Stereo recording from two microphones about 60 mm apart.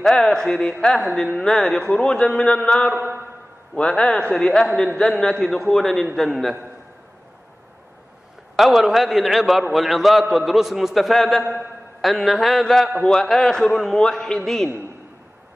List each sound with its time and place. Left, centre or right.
0.0 s a man's voice: centre
2.9 s a man's voice: right
3.7 s a man's voice: centre
5.4 s a man's voice: centre
8.5 s a man's voice: centre